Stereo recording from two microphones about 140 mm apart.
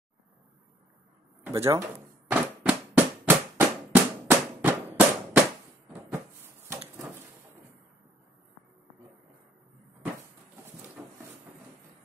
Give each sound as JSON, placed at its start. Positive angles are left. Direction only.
{"t": 1.4, "sound": "speech", "side_deg": -20}
{"t": 2.3, "sound": "drum", "side_deg": -10}
{"t": 5.9, "sound": "a sound", "side_deg": -15}